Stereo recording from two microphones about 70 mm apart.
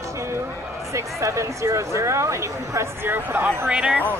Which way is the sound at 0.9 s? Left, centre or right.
Right.